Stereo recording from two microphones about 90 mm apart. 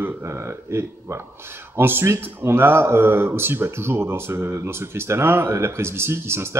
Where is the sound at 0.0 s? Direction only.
30° right (ahead or behind).